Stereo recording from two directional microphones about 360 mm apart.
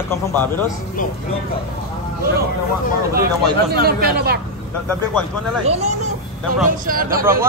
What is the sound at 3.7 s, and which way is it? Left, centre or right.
Speech, right.